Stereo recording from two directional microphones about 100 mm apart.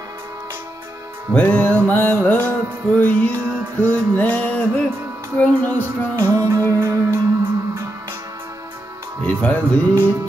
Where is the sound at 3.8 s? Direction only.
15° left (ahead or behind).